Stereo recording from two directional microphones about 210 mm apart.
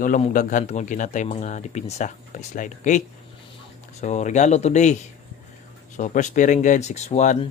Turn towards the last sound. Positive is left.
turn(degrees=35)  # may be behind; listen again after turning